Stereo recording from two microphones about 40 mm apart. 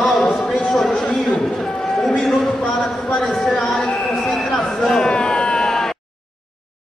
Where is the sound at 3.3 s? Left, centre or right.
Centre.